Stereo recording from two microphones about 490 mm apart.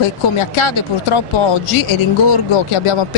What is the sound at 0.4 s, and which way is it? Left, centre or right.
Speech, left.